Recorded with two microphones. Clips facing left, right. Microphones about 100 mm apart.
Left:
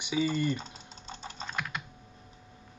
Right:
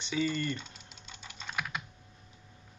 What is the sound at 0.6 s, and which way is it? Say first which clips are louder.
Typing: left 4 dB; 40° left (ahead or behind).